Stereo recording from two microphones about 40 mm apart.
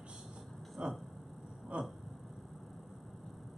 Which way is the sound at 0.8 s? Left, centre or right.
Right.